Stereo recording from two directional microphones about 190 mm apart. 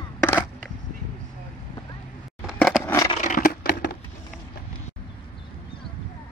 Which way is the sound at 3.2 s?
45° left (ahead or behind).